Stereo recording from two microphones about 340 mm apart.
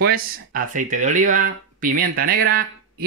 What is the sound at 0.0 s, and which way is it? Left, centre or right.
Speech, right.